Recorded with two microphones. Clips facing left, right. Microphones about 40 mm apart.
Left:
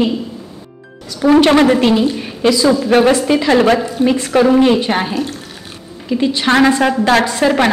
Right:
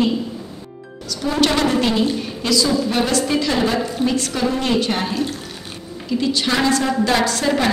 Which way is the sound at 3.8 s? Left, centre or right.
Centre.